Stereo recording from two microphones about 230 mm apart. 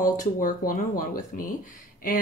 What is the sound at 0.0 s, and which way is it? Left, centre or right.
Speech, left.